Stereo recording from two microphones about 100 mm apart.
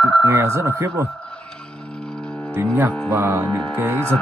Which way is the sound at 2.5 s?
25° right (ahead or behind).